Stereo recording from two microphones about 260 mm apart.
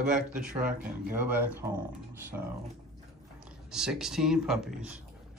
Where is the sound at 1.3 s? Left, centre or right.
Centre.